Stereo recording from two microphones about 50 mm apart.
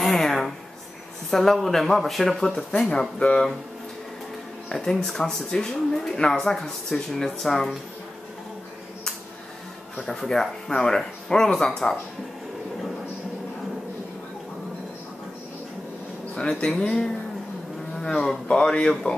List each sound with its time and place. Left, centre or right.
0.0 s a sound: centre
1.3 s speech: centre
2.7 s speech: left
3.0 s speech: centre
4.7 s speech: centre
10.0 s speech: centre
16.3 s speech: centre
18.2 s speech: centre